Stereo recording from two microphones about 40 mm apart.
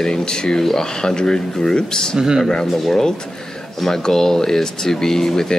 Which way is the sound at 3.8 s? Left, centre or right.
Centre.